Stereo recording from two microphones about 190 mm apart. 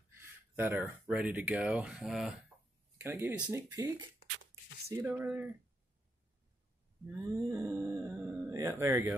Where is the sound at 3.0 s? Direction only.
10° right (ahead or behind).